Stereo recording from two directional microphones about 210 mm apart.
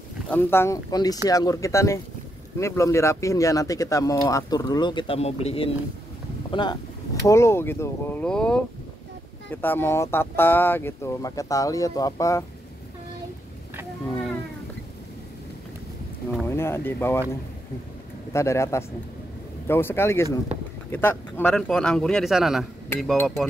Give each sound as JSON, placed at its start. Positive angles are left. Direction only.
{"t": 0.3, "sound": "speech", "side_deg": 10}
{"t": 16.3, "sound": "speech", "side_deg": 10}
{"t": 18.3, "sound": "speech", "side_deg": 15}